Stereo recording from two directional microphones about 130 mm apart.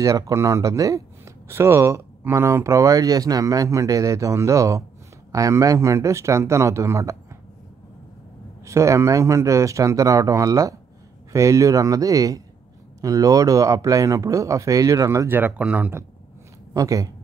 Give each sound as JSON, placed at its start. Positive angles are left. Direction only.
{"t": 0.0, "sound": "speech", "side_deg": -25}
{"t": 8.6, "sound": "speech", "side_deg": -25}